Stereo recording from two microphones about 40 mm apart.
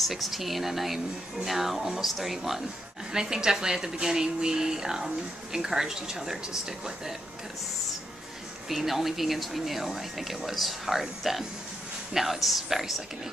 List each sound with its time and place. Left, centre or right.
0.0 s speech: centre
3.1 s a woman's voice: centre
8.6 s speech: centre